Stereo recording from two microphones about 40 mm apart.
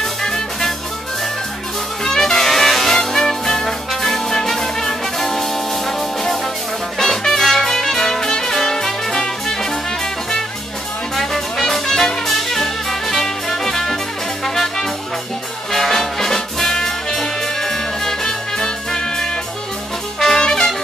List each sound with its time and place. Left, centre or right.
0.0 s music: centre
2.0 s brass instrument: centre
7.0 s music: centre
11.1 s music: centre